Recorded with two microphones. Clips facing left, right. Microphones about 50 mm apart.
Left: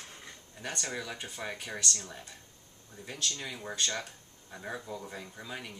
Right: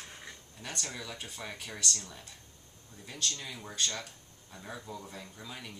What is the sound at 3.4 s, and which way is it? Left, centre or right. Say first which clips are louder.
Speech: left 2 dB; left.